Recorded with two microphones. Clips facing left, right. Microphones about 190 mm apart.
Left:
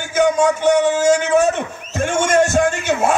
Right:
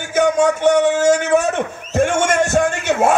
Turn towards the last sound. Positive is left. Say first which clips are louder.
# right 1 dB
turn(degrees=-60)  # may be behind; listen again after turning